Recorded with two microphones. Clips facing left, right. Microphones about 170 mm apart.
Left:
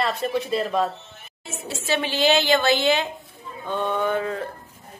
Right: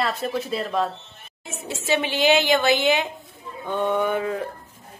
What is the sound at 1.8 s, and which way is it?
A woman's voice, 15° right (ahead or behind).